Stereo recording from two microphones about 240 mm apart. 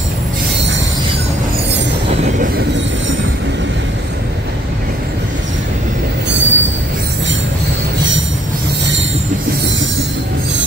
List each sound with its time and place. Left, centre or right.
2.4 s train: right
6.3 s train: right